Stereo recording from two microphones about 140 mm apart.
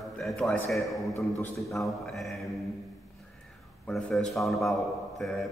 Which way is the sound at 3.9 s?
Centre (ahead or behind).